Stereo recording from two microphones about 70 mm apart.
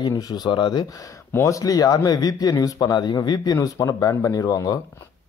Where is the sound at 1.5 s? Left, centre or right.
Left.